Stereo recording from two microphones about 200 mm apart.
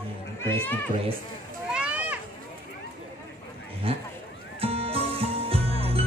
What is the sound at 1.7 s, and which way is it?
Children playing, 5° right (ahead or behind).